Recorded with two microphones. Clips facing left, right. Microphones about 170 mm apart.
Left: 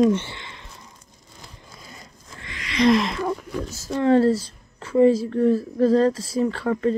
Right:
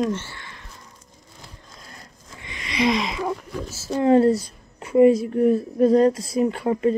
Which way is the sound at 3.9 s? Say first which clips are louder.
Right 1 dB; 15° right (ahead or behind).